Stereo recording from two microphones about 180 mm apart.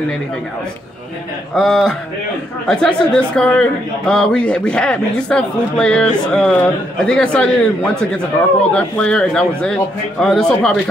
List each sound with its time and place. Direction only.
1.5 s a man's voice: centre (ahead or behind)